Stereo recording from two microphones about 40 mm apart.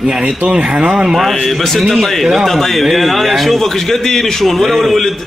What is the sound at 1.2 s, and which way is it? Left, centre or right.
A man's voice, centre.